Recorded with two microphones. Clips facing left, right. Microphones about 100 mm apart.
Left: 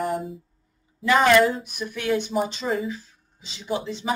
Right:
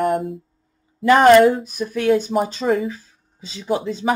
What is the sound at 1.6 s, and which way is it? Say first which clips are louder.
Speech: right 8 dB; 35° right (ahead or behind).